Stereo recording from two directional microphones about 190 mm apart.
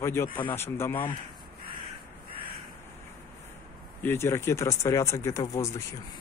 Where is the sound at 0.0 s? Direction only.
10° left (ahead or behind).